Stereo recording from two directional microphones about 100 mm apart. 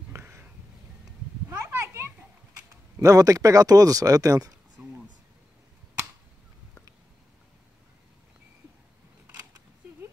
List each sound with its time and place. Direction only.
0.1 s a sound: 20° right (ahead or behind)
1.5 s children playing: 25° right (ahead or behind)
2.7 s speech: 35° right (ahead or behind)